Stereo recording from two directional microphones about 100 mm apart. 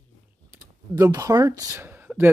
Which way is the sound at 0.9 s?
30° right (ahead or behind).